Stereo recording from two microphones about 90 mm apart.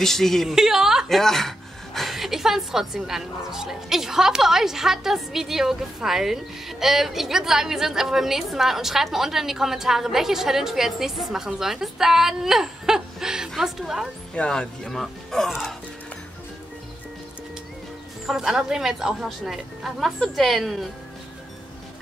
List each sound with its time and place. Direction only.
0.0 s a woman's voice: 5° left (ahead or behind)
14.3 s a woman's voice: 10° left (ahead or behind)
18.2 s a woman's voice: 5° right (ahead or behind)